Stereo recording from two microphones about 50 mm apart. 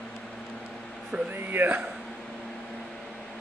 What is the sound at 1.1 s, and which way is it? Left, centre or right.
Speech, right.